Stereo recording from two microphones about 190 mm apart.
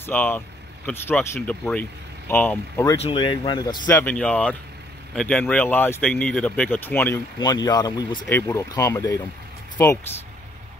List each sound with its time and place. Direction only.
0.0 s speech: 10° left (ahead or behind)
3.0 s speech: 25° left (ahead or behind); by 7.2 s 10° left (ahead or behind)
7.3 s speech: 20° left (ahead or behind)